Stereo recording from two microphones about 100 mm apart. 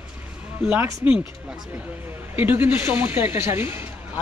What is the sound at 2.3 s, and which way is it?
Speech, 20° right (ahead or behind).